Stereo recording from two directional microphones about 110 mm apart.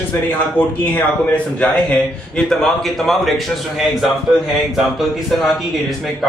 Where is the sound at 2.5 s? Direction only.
Centre (ahead or behind).